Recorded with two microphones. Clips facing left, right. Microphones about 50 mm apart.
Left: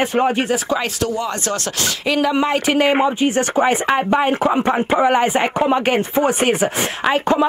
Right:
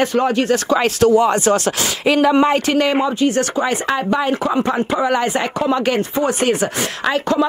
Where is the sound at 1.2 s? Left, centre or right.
Centre.